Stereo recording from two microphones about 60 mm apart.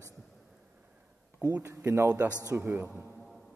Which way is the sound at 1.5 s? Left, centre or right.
Right.